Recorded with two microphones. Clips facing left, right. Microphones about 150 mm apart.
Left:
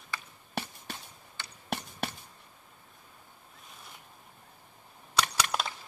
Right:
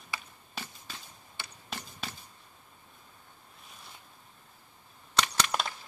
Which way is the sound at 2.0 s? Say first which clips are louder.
Left 6 dB; 70° left (ahead or behind).